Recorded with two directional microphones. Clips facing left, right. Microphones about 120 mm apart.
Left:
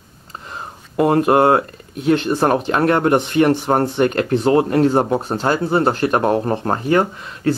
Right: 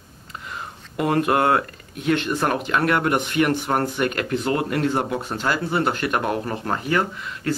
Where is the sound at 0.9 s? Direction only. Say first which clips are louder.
Left 6 dB; 30° left (ahead or behind).